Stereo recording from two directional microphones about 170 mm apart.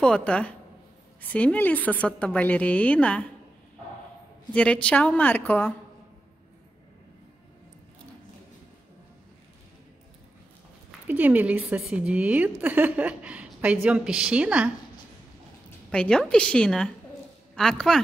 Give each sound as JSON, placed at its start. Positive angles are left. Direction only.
{"t": 0.0, "sound": "a woman's voice", "side_deg": 5}
{"t": 4.6, "sound": "a woman's voice", "side_deg": 5}
{"t": 11.1, "sound": "a woman's voice", "side_deg": -10}
{"t": 15.9, "sound": "a woman's voice", "side_deg": 5}